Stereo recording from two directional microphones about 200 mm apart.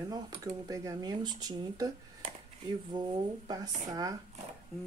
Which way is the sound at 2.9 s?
20° right (ahead or behind).